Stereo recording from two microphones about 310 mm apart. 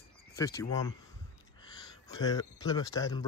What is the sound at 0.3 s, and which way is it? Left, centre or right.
Speech, centre.